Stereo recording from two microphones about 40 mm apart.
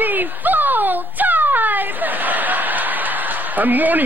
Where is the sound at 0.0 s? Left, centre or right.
Right.